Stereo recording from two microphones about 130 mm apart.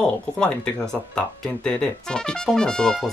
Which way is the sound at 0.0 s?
5° left (ahead or behind).